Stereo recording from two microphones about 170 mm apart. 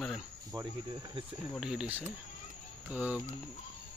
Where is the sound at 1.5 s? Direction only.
5° right (ahead or behind).